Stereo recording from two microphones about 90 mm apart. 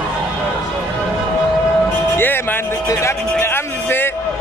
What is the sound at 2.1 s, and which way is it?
Music, 25° left (ahead or behind).